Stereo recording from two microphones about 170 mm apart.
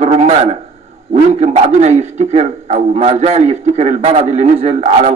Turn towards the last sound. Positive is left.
turn(degrees=-40)  # may be behind; listen again after turning